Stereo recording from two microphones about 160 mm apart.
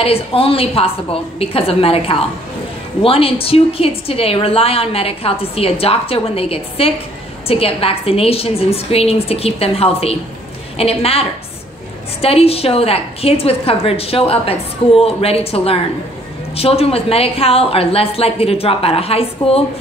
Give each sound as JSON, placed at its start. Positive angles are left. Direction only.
{"t": 0.0, "sound": "a woman's voice", "side_deg": 35}